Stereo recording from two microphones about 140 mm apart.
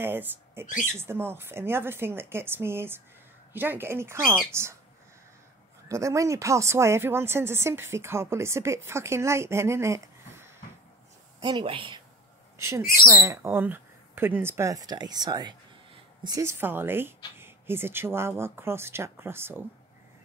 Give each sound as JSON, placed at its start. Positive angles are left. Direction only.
{"t": 0.0, "sound": "speech", "side_deg": -15}
{"t": 5.9, "sound": "speech", "side_deg": -20}
{"t": 11.3, "sound": "a woman's voice", "side_deg": -35}
{"t": 12.5, "sound": "speech", "side_deg": -20}